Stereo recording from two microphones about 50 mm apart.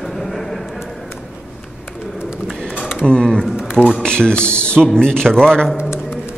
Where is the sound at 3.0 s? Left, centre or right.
Centre.